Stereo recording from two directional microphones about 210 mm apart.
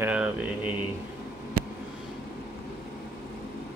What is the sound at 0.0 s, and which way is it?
Mantra, 5° right (ahead or behind).